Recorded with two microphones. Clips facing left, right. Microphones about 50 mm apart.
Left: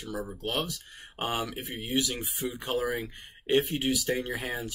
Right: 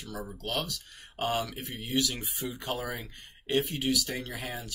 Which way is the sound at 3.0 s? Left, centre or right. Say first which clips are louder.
Left 5 dB; left.